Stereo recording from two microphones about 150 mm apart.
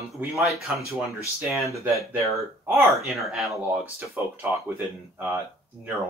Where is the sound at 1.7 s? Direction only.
20° right (ahead or behind).